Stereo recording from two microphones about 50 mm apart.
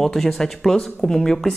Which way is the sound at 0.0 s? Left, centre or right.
Centre.